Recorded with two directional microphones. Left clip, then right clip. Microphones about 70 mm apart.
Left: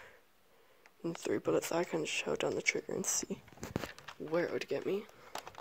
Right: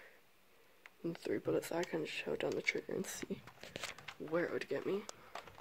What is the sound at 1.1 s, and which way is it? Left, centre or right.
Speech, left.